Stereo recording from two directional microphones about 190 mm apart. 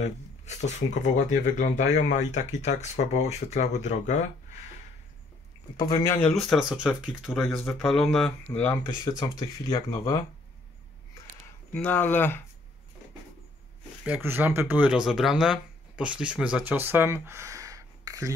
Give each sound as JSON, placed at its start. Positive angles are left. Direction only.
{"t": 0.0, "sound": "speech", "side_deg": 35}
{"t": 5.8, "sound": "speech", "side_deg": 20}
{"t": 7.2, "sound": "speech", "side_deg": 10}
{"t": 11.7, "sound": "speech", "side_deg": 5}
{"t": 14.0, "sound": "speech", "side_deg": -10}